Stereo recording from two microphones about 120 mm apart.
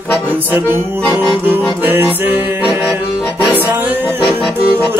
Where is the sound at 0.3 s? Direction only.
15° right (ahead or behind).